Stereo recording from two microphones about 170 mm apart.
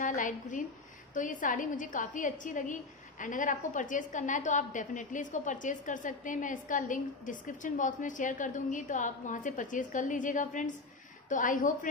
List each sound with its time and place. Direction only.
0.0 s a woman's voice: 50° left (ahead or behind)